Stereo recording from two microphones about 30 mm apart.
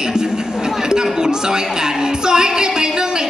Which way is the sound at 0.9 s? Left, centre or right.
Right.